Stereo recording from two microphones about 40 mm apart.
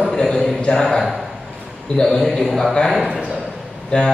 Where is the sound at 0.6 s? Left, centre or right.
Centre.